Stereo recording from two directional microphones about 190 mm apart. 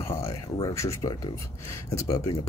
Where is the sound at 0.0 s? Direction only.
15° left (ahead or behind).